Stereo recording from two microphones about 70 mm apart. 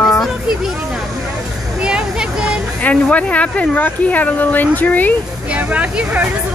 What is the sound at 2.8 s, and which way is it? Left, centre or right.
Speech, centre.